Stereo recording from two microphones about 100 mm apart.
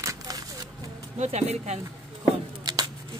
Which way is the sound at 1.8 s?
40° right (ahead or behind).